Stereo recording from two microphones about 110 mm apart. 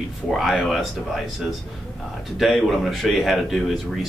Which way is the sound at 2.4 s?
Centre (ahead or behind).